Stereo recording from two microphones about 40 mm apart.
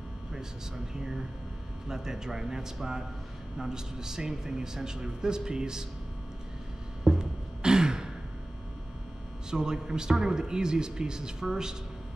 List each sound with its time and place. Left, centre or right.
1.9 s a man's voice: centre
7.2 s a sound: centre
9.5 s a man's voice: centre